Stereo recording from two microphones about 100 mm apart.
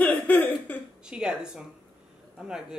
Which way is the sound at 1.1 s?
10° right (ahead or behind).